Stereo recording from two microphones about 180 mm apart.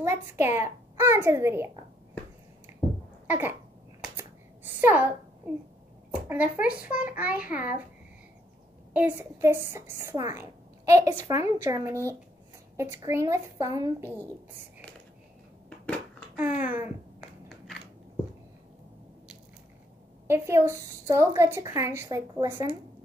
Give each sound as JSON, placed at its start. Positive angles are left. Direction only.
{"t": 0.0, "sound": "a woman's voice", "side_deg": -15}
{"t": 3.3, "sound": "a sound", "side_deg": -10}
{"t": 4.7, "sound": "a child's voice", "side_deg": -10}
{"t": 6.1, "sound": "a woman's voice", "side_deg": -10}
{"t": 8.9, "sound": "a woman's voice", "side_deg": -10}
{"t": 16.3, "sound": "a woman's voice", "side_deg": -10}
{"t": 20.2, "sound": "a woman's voice", "side_deg": -15}